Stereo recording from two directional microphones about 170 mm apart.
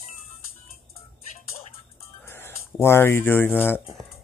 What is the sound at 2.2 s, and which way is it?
Speech, 15° left (ahead or behind).